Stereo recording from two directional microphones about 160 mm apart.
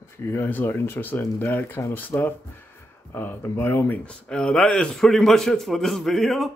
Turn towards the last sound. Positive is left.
turn(degrees=0)  # may be behind; listen again after turning